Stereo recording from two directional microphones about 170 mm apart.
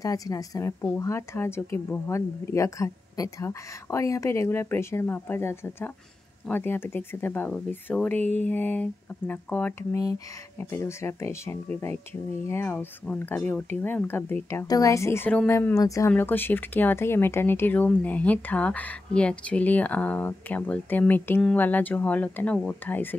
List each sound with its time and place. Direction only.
0.0 s speech: 20° left (ahead or behind)